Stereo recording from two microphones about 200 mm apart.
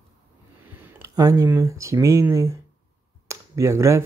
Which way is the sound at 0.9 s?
15° right (ahead or behind).